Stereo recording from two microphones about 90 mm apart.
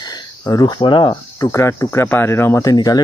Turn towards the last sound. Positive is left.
turn(degrees=50)  # may be behind; listen again after turning